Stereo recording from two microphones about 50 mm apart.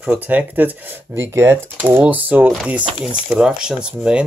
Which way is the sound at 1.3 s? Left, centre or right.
Right.